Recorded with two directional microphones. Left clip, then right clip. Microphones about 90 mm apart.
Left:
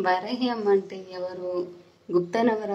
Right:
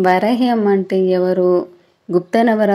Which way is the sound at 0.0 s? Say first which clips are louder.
Right 11 dB; 45° right (ahead or behind).